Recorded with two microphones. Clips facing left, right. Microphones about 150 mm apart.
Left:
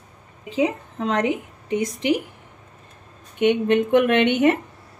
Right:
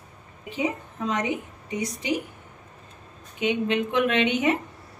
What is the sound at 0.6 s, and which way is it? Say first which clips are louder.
A woman's voice: left 6 dB; 90° left.